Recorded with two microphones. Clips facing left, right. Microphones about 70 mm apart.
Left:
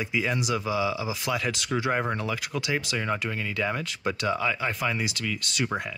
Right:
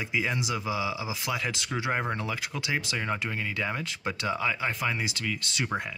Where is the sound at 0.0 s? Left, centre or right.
Centre.